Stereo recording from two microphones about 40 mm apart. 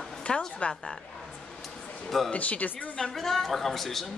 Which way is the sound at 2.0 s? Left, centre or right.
Centre.